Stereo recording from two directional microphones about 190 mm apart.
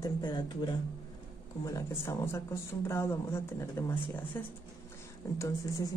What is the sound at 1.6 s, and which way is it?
Speech, 15° left (ahead or behind).